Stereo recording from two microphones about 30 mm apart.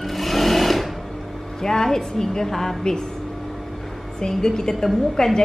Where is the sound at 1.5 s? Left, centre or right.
Centre.